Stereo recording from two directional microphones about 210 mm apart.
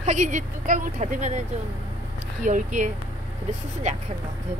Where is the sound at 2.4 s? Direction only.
35° right (ahead or behind).